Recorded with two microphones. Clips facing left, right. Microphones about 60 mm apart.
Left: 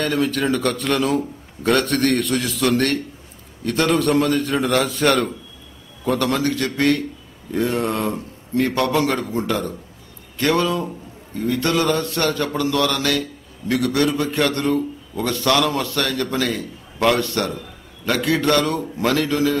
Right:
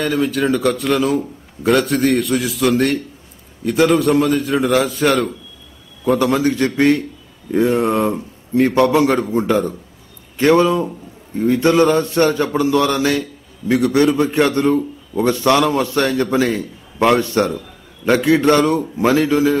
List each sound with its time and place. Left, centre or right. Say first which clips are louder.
0.0 s a man's voice: right 3 dB; centre; by 19.5 s right